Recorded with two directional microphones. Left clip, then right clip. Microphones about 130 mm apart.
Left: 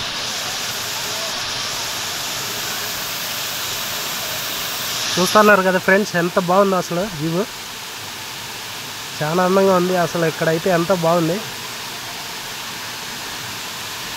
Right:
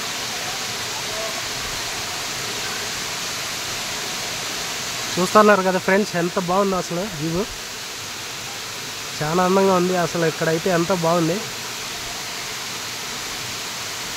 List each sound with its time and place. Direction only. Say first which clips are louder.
5.2 s speech: left 2 dB; 10° left (ahead or behind)
9.2 s speech: left 2 dB; centre (ahead or behind)